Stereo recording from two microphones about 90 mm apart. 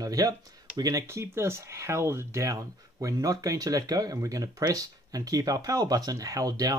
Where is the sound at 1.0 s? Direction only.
30° right (ahead or behind).